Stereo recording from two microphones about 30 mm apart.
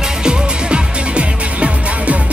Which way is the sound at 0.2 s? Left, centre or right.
Right.